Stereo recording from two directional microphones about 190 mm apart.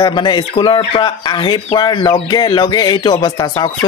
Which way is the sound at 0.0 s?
25° left (ahead or behind).